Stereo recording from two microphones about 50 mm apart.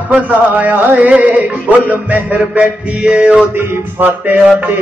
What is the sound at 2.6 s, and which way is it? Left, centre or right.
Music, centre.